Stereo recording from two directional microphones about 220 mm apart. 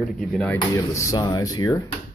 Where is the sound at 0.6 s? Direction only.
15° left (ahead or behind).